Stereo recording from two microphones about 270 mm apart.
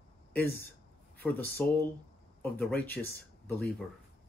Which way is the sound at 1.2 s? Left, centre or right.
Centre.